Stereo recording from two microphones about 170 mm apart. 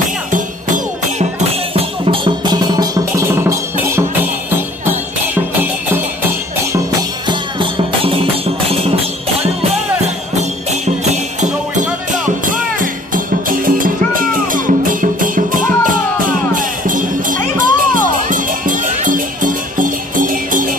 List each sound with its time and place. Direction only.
0.3 s music: 50° right (ahead or behind)
1.7 s music: 30° right (ahead or behind); by 5.7 s 10° right (ahead or behind)
7.2 s music: 30° right (ahead or behind); by 20.7 s 55° right (ahead or behind)